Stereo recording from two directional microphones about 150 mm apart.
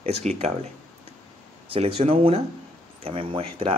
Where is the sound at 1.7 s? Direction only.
40° right (ahead or behind).